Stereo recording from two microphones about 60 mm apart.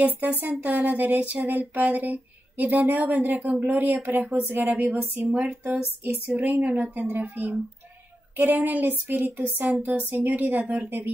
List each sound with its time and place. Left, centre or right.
0.0 s speech: right
4.3 s speech: right
4.6 s speech: right
8.6 s speech: right